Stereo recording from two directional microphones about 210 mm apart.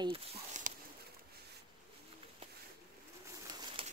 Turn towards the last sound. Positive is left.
turn(degrees=-20)  # may be behind; listen again after turning